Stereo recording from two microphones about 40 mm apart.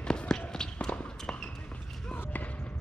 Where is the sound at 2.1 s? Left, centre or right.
Left.